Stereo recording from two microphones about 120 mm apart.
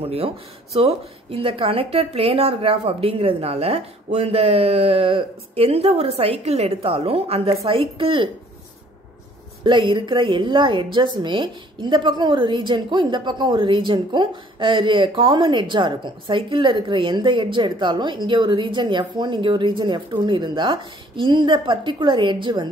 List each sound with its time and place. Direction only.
0.0 s a woman's voice: 55° right (ahead or behind)
9.6 s a woman's voice: 40° right (ahead or behind)